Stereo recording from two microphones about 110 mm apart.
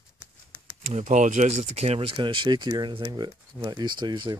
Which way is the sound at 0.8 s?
90° right.